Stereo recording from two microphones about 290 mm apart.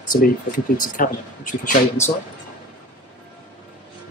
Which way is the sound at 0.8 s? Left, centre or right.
Left.